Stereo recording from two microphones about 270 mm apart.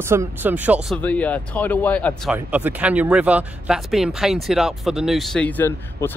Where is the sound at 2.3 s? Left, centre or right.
Centre.